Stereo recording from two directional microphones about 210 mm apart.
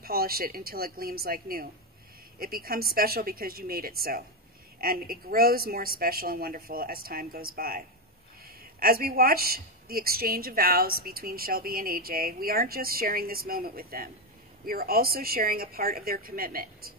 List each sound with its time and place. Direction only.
0.0 s a woman's voice: 45° right (ahead or behind)